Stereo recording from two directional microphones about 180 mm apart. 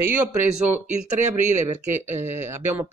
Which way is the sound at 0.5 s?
10° right (ahead or behind).